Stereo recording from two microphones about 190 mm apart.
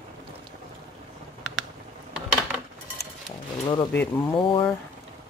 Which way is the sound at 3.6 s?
15° left (ahead or behind).